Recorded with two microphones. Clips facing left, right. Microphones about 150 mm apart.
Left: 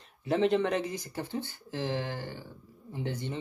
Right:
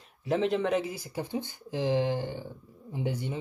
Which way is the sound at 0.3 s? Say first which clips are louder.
Even; centre (ahead or behind).